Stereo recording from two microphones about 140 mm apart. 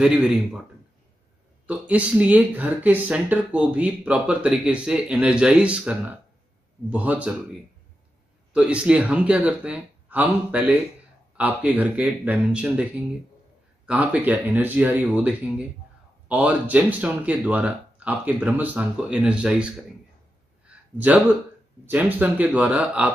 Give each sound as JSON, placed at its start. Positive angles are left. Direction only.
{"t": 0.0, "sound": "a man's voice", "side_deg": -5}
{"t": 1.7, "sound": "speech", "side_deg": -10}
{"t": 8.5, "sound": "speech", "side_deg": -5}
{"t": 13.8, "sound": "speech", "side_deg": -10}
{"t": 20.6, "sound": "a sound", "side_deg": -10}
{"t": 21.8, "sound": "speech", "side_deg": -10}